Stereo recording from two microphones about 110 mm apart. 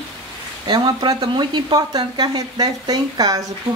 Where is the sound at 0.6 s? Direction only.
40° right (ahead or behind).